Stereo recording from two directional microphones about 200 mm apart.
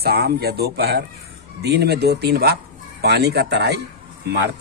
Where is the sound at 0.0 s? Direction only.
50° right (ahead or behind).